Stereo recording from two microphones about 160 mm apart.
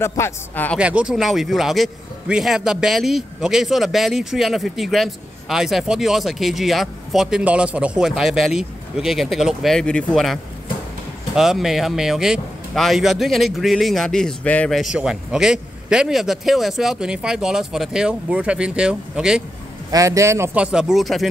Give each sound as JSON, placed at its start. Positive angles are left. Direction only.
{"t": 0.0, "sound": "a man's voice", "side_deg": 15}
{"t": 0.7, "sound": "a man's voice", "side_deg": -5}
{"t": 19.9, "sound": "speech", "side_deg": -20}